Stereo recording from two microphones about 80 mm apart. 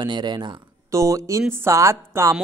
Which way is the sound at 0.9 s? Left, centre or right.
Right.